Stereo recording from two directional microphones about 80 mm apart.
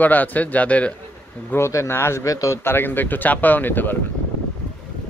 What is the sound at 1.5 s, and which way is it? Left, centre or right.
Speech, left.